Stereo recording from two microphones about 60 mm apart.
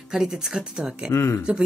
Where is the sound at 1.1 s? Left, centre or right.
Left.